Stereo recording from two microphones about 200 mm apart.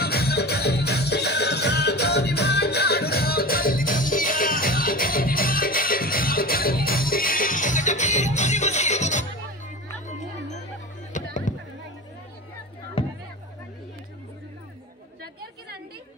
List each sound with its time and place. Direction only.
0.0 s music: 50° left (ahead or behind); by 9.2 s 35° left (ahead or behind)
10.0 s wind chime: 35° left (ahead or behind)
11.1 s a sound: 40° left (ahead or behind)